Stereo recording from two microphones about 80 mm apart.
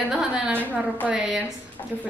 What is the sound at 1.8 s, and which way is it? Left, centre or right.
Speech, left.